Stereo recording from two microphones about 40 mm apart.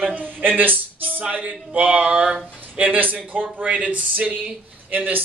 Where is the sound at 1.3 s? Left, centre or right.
Right.